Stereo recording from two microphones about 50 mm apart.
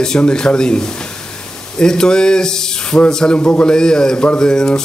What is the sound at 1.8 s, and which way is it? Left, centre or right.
Speech, centre.